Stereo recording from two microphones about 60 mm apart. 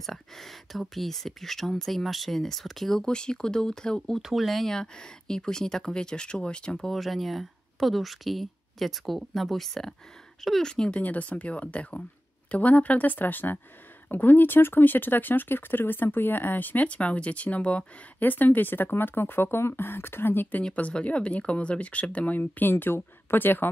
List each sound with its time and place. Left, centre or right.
0.0 s speech: centre
4.2 s speech: centre
6.9 s speech: centre
11.0 s speech: left
20.7 s speech: left